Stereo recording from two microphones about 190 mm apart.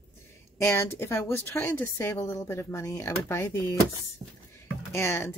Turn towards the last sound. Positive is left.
turn(degrees=10)  # may be behind; listen again after turning